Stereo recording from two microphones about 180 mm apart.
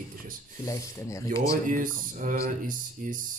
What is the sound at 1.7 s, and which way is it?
Speech, 50° right (ahead or behind).